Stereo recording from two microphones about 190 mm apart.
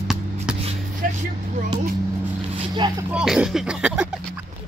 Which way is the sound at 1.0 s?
45° right (ahead or behind).